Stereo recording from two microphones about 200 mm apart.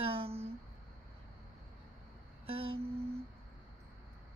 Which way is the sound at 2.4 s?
30° right (ahead or behind).